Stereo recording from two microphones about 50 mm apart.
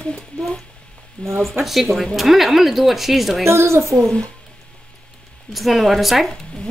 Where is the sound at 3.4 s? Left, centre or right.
Right.